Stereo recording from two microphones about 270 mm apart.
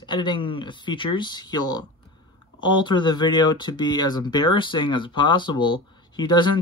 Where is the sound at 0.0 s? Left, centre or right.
Centre.